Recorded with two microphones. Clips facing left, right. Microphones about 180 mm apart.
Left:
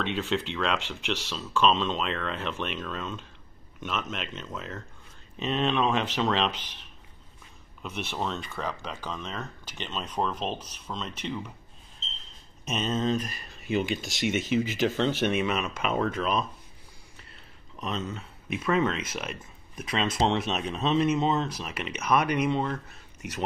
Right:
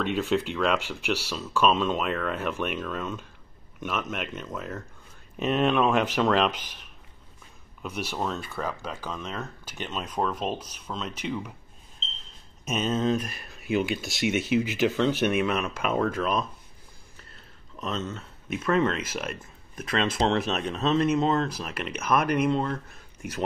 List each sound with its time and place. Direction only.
0.0 s speech: 10° right (ahead or behind)
12.6 s speech: 5° right (ahead or behind)
15.4 s speech: centre (ahead or behind)
17.7 s speech: 10° left (ahead or behind)